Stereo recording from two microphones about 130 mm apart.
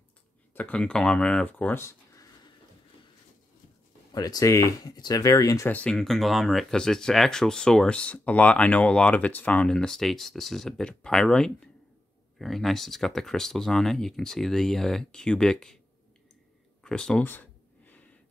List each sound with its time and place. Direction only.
0.6 s speech: 10° left (ahead or behind)
4.1 s speech: 30° left (ahead or behind)
5.7 s speech: 10° left (ahead or behind)
16.8 s a sound: 5° left (ahead or behind)